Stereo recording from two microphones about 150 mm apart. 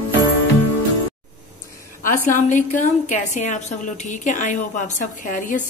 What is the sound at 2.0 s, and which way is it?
A woman's voice, 55° left (ahead or behind).